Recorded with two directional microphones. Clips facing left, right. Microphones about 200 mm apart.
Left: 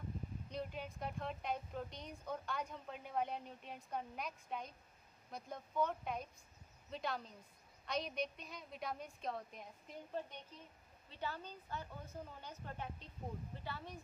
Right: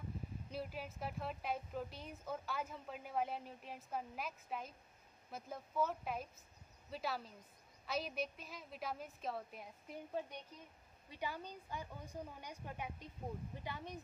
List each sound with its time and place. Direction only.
0.5 s speech: 5° right (ahead or behind)